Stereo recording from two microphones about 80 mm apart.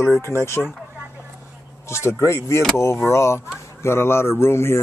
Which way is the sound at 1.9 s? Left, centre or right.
Left.